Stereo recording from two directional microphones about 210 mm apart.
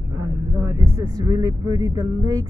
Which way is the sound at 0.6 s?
15° right (ahead or behind).